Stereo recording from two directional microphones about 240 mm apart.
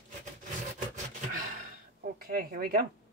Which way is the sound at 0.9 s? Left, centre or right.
Right.